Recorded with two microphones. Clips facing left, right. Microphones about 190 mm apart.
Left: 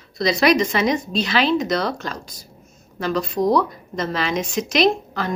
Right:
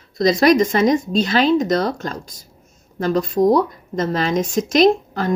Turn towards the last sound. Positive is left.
turn(degrees=-45)  # may be behind; listen again after turning